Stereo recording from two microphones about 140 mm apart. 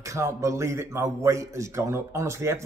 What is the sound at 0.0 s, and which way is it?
A man's voice, 20° right (ahead or behind).